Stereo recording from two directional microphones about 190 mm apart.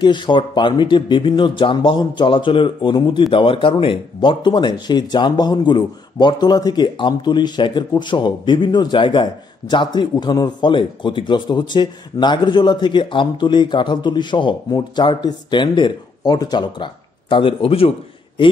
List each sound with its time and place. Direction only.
0.0 s speech: 25° left (ahead or behind)